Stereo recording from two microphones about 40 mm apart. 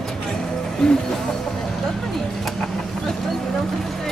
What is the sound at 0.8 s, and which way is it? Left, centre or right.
Speech, centre.